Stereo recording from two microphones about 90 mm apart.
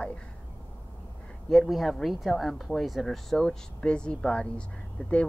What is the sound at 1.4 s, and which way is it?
Speech, centre (ahead or behind).